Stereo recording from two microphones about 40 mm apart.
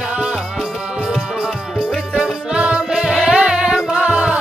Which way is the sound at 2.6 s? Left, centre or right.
Right.